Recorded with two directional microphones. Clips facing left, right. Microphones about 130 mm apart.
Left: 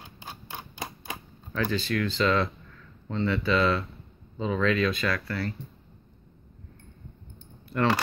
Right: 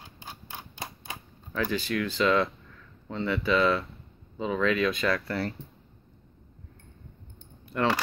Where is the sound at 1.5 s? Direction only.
15° right (ahead or behind).